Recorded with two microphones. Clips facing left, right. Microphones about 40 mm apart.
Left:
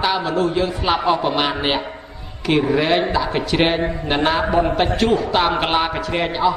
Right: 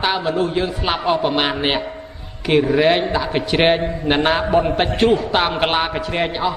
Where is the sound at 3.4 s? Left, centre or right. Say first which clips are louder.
Right 4 dB; centre.